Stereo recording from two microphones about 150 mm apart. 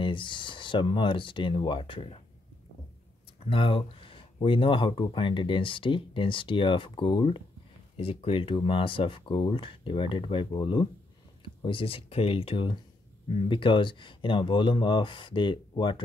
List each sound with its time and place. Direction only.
0.0 s speech: 35° left (ahead or behind)
3.3 s speech: 35° left (ahead or behind)